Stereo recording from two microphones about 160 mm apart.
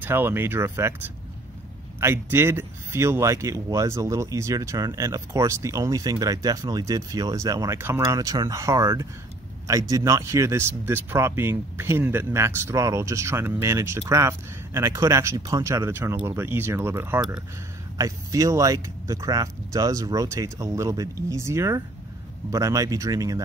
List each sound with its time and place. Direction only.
0.0 s speech: 10° right (ahead or behind)
2.0 s speech: 15° right (ahead or behind)